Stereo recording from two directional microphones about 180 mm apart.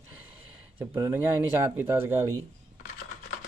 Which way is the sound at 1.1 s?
15° right (ahead or behind).